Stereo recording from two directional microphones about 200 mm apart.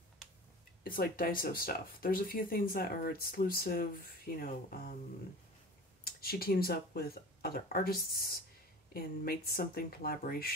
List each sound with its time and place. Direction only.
0.8 s speech: 45° left (ahead or behind)
6.0 s speech: 50° left (ahead or behind)